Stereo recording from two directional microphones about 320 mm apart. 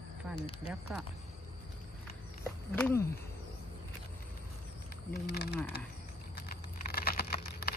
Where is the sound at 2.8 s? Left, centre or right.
Centre.